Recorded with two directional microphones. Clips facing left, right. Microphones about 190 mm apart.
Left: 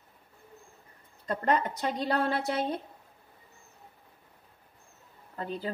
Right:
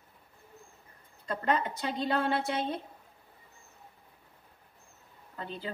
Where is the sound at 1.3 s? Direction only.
40° left (ahead or behind).